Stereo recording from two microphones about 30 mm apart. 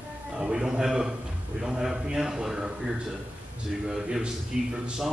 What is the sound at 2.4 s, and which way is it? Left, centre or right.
Speech, right.